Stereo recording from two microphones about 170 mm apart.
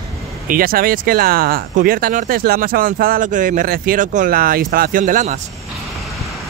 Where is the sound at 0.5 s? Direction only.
60° right (ahead or behind).